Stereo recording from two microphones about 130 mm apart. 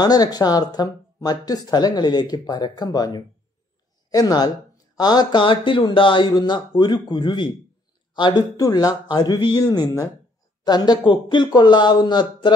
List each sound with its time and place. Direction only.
0.0 s speech: 30° left (ahead or behind)